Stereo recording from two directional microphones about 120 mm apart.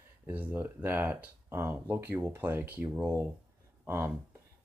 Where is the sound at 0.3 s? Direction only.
15° right (ahead or behind).